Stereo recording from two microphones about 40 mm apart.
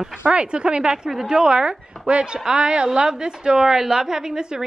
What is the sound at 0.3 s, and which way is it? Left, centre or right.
Speech, right.